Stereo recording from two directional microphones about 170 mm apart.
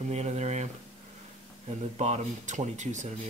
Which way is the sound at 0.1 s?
40° right (ahead or behind).